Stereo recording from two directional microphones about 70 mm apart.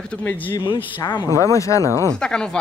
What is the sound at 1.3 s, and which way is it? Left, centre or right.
Speech, left.